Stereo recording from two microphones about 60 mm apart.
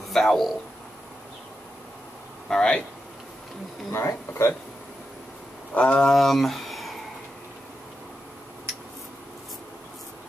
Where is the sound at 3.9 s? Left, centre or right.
Left.